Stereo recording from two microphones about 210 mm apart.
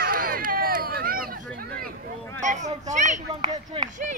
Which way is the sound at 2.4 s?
35° right (ahead or behind).